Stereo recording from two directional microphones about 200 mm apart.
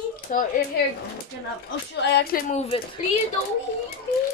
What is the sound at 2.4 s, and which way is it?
Speech, 30° left (ahead or behind).